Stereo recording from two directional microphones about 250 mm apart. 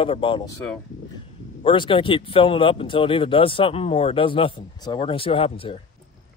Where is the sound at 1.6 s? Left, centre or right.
Left.